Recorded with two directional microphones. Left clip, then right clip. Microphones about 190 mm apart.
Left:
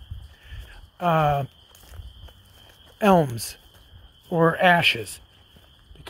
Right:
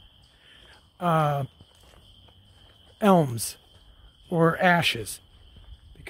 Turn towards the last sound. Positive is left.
turn(degrees=-15)  # may be behind; listen again after turning